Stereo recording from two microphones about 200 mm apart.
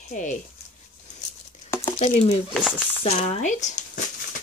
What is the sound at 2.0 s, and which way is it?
Speech, 30° left (ahead or behind).